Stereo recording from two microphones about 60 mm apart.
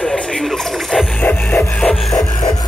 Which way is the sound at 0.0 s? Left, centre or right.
Centre.